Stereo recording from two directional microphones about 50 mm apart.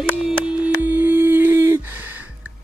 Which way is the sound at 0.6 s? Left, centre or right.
Right.